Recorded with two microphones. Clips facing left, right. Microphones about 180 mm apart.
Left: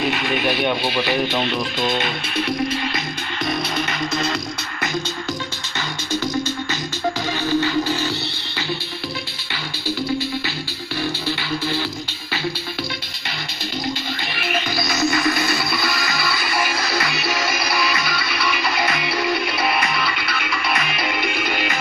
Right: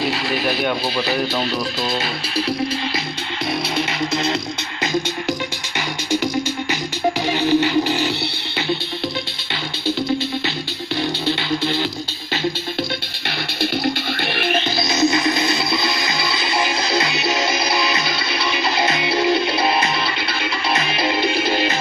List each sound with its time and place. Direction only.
0.0 s radio: 30° right (ahead or behind)
3.7 s music: 20° right (ahead or behind)
7.3 s music: 20° right (ahead or behind)
11.0 s music: 20° right (ahead or behind)
13.6 s music: 65° right (ahead or behind)
14.5 s music: 25° right (ahead or behind)